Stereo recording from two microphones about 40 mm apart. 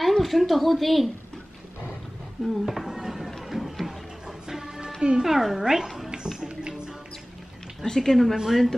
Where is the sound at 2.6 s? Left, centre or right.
Centre.